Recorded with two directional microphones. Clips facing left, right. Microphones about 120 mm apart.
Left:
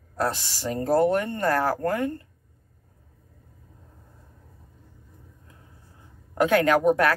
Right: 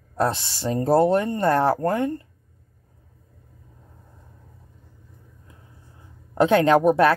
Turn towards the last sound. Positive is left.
turn(degrees=-20)  # may be behind; listen again after turning